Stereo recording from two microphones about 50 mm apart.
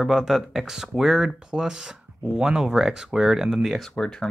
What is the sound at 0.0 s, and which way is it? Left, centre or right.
Speech, centre.